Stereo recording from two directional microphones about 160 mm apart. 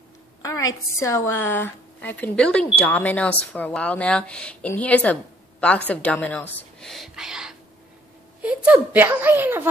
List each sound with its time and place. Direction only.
0.4 s a woman's voice: 20° left (ahead or behind); by 9.7 s 15° right (ahead or behind)